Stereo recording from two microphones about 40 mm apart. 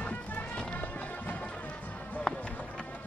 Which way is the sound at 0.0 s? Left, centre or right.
Left.